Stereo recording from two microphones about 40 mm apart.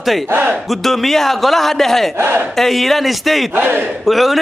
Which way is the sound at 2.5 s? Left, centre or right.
Centre.